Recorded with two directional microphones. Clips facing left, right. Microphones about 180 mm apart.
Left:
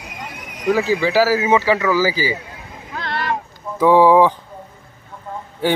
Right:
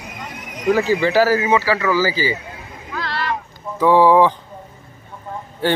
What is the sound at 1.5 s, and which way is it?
Speech, 20° left (ahead or behind).